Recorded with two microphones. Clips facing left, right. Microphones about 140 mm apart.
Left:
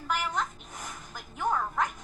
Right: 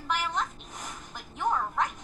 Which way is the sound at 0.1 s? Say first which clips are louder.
Even; 5° left (ahead or behind).